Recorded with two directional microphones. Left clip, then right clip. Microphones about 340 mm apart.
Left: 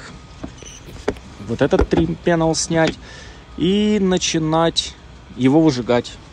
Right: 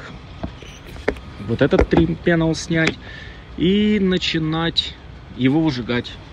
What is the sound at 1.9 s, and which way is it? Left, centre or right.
Speech, centre.